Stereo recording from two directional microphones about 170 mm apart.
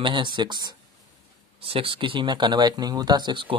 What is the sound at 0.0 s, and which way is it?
Speech, 30° right (ahead or behind).